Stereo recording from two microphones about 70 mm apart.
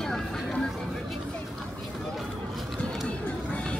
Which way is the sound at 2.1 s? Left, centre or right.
Centre.